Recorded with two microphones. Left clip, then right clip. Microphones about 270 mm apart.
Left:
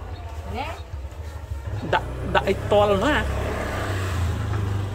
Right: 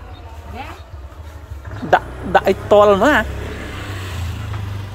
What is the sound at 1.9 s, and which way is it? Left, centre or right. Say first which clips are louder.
Speech: right 8 dB; centre.